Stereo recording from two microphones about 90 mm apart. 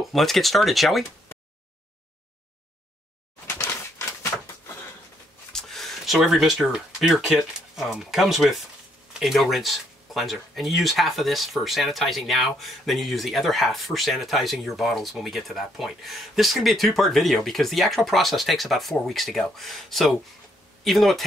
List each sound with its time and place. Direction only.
0.1 s speech: centre (ahead or behind)
3.4 s a sound: 30° left (ahead or behind)
5.5 s speech: 5° left (ahead or behind)